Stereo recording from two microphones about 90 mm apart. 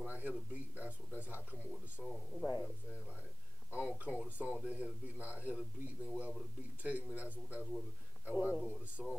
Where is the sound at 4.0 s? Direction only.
15° right (ahead or behind).